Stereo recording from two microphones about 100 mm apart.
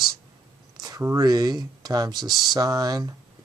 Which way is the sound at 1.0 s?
35° right (ahead or behind).